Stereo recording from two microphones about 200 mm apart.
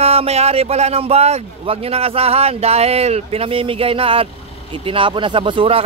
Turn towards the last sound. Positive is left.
turn(degrees=-25)  # may be behind; listen again after turning